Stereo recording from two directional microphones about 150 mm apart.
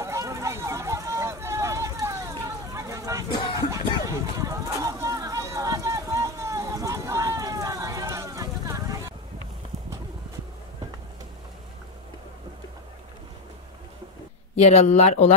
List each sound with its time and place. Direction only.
0.0 s run: 20° right (ahead or behind)
3.7 s a sound: 20° right (ahead or behind)
14.5 s speech: 45° left (ahead or behind)